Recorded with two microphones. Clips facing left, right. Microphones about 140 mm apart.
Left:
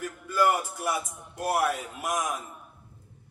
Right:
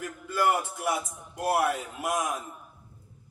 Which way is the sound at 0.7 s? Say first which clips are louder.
Right 1 dB; 20° right (ahead or behind).